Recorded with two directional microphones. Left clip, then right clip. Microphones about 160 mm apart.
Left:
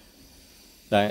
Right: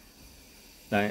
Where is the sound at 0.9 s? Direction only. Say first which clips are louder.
Left 6 dB; 30° left (ahead or behind).